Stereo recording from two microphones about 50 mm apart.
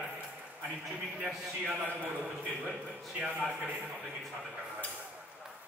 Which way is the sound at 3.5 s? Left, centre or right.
Right.